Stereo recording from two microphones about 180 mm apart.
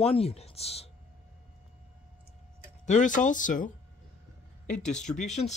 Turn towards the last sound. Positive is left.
turn(degrees=40)  # may be behind; listen again after turning